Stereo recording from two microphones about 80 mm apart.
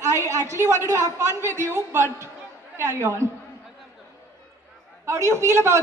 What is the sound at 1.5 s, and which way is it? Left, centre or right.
Speech, left.